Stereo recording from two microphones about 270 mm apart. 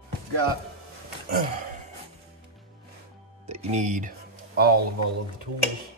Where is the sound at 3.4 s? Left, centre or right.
Right.